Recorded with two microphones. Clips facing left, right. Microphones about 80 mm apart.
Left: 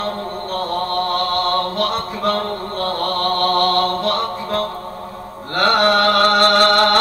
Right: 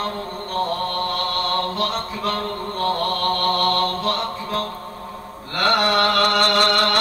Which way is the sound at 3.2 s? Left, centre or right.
Left.